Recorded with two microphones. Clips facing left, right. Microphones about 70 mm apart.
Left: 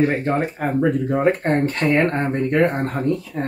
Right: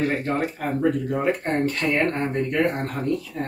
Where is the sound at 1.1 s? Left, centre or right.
Left.